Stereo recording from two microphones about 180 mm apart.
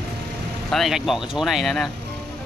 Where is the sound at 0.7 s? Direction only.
Centre (ahead or behind).